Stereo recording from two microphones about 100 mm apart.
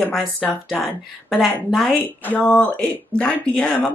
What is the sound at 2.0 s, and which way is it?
Speech, 20° left (ahead or behind).